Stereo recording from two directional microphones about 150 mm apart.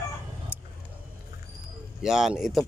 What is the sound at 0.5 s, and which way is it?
Vehicle, 10° right (ahead or behind).